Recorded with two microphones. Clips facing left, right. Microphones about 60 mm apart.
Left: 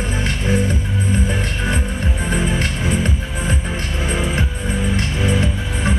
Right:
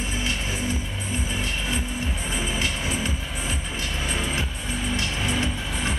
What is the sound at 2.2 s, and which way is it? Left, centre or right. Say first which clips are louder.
Music: left 8 dB; left.